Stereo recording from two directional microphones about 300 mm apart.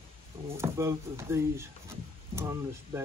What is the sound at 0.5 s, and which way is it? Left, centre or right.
Speech, centre.